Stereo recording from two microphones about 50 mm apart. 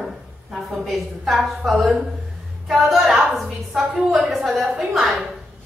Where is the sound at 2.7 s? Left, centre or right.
Centre.